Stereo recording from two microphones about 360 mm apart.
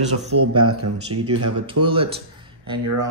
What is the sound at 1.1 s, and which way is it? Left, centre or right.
Speech, right.